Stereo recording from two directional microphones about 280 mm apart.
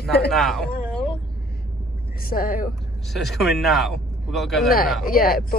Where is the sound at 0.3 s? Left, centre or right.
Centre.